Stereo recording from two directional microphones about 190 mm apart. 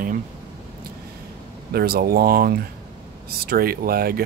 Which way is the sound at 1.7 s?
55° right (ahead or behind).